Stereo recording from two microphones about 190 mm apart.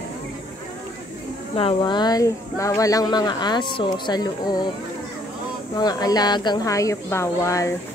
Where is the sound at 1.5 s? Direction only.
25° left (ahead or behind).